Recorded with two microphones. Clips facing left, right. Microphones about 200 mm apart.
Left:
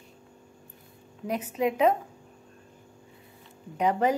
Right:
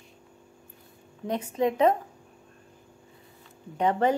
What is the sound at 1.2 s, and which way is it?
Speech, 30° right (ahead or behind).